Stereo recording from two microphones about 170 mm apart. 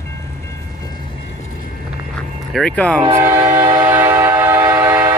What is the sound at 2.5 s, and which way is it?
Speech, 5° left (ahead or behind).